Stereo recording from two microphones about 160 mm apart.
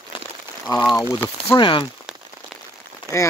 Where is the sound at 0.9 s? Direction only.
15° left (ahead or behind).